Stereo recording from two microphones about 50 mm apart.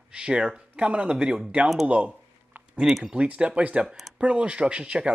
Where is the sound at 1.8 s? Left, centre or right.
Right.